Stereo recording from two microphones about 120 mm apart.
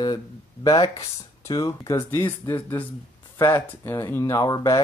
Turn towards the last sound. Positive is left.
turn(degrees=30)  # may be behind; listen again after turning